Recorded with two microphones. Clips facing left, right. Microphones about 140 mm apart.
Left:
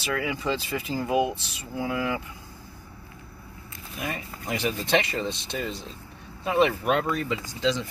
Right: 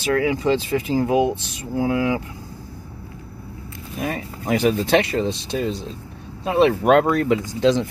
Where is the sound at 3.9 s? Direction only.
45° right (ahead or behind).